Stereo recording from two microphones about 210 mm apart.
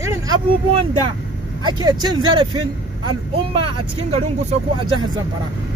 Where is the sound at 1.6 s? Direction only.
20° right (ahead or behind).